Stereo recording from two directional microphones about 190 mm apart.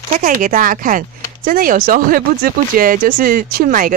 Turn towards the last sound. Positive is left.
turn(degrees=-45)  # may be behind; listen again after turning